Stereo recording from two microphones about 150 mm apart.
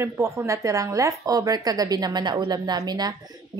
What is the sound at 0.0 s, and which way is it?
A woman's voice, 20° right (ahead or behind).